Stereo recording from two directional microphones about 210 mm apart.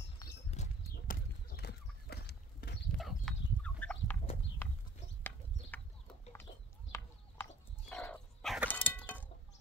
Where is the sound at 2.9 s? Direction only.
Centre (ahead or behind).